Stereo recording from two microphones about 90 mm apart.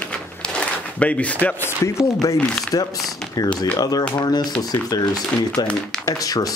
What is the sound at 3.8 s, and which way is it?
Speech, 45° left (ahead or behind).